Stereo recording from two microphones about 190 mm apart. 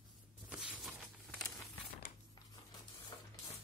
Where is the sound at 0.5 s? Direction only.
5° right (ahead or behind).